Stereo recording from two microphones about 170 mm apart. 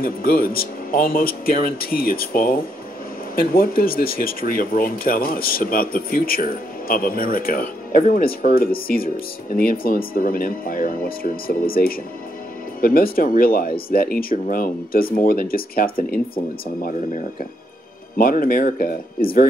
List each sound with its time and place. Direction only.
0.0 s speech: 60° left (ahead or behind)
18.1 s speech: 55° left (ahead or behind)